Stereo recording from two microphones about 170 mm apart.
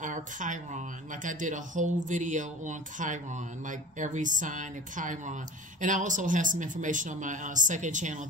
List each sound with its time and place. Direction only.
0.0 s speech: 50° right (ahead or behind)